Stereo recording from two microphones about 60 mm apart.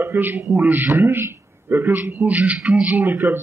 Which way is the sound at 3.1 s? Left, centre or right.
Right.